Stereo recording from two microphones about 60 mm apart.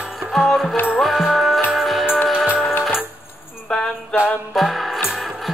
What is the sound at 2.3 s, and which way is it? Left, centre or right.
Music, centre.